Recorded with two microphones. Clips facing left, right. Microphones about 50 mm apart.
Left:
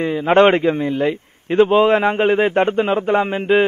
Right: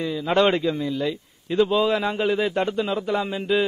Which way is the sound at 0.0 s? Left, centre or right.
Left.